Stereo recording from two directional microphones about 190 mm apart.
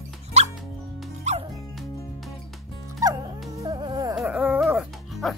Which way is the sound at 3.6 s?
20° right (ahead or behind).